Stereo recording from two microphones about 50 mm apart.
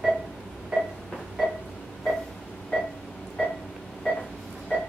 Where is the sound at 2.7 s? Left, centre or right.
Centre.